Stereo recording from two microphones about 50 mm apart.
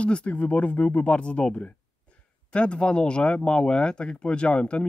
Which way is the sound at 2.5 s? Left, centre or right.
Left.